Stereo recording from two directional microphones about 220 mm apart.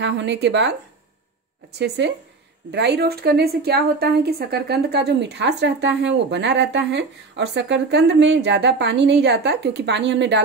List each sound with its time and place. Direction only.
0.0 s a woman's voice: 55° right (ahead or behind)
1.8 s a woman's voice: 50° right (ahead or behind)